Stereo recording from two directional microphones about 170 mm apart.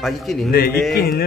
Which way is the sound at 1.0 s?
65° left (ahead or behind).